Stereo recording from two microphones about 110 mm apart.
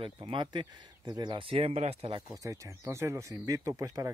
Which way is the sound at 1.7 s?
80° right.